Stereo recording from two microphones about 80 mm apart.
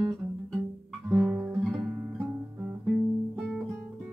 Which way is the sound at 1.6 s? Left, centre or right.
Centre.